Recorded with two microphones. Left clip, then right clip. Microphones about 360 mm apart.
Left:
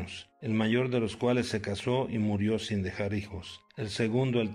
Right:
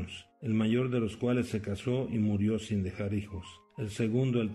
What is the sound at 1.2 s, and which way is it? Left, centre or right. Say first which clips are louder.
Speech: left 4 dB; left.